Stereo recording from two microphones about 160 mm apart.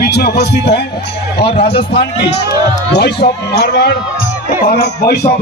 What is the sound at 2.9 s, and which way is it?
Speech, 90° left.